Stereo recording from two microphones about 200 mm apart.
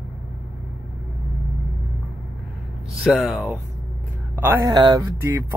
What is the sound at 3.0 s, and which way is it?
Speech, centre (ahead or behind).